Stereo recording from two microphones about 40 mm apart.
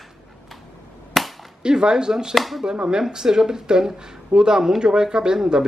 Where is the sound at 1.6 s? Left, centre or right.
Right.